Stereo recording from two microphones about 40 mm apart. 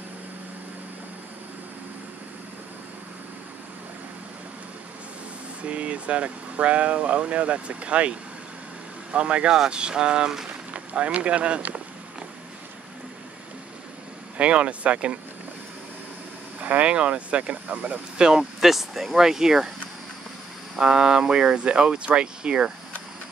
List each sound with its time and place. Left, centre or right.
5.6 s speech: right
10.7 s boat: right
11.1 s speech: right
14.3 s speech: right
16.6 s speech: right
16.9 s speech: right
18.1 s speech: centre
18.6 s speech: centre
20.7 s speech: centre